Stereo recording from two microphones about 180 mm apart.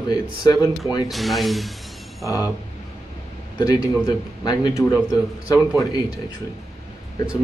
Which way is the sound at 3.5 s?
20° left (ahead or behind).